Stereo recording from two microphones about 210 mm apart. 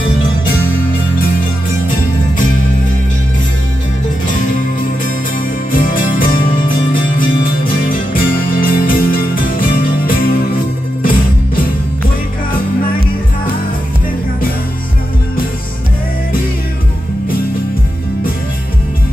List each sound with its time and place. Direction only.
1.9 s music: 40° left (ahead or behind)
5.7 s music: 40° left (ahead or behind)